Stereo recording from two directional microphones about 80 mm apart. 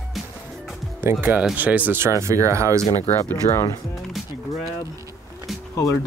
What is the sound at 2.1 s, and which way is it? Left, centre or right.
Speech, right.